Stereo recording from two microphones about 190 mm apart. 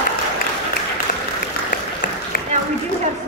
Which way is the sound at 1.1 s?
45° left (ahead or behind).